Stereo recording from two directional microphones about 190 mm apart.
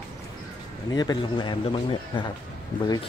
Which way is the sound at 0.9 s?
20° left (ahead or behind).